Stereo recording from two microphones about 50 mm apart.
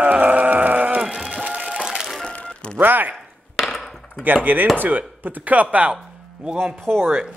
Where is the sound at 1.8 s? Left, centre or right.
Centre.